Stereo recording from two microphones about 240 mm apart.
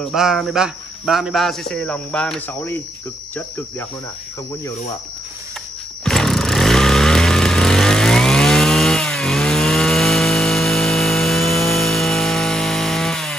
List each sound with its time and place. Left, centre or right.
0.0 s speech: centre
6.0 s chainsaw: centre